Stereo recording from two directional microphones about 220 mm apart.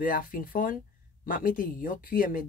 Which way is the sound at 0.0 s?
40° left (ahead or behind).